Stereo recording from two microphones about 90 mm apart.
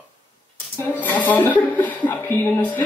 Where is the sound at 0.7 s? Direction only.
20° left (ahead or behind).